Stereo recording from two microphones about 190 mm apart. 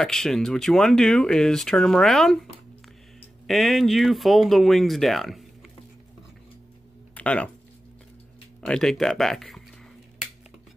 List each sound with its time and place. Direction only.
0.0 s speech: centre (ahead or behind)
3.4 s speech: centre (ahead or behind)
7.2 s speech: 5° left (ahead or behind)
8.6 s speech: 5° left (ahead or behind)